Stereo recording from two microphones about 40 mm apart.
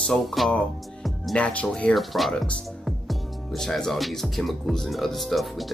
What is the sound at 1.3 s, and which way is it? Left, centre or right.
Speech, left.